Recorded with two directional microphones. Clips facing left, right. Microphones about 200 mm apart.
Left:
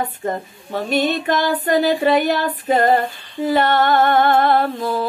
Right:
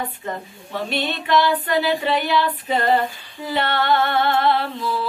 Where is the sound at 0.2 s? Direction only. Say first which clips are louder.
Left 6 dB; 45° left (ahead or behind).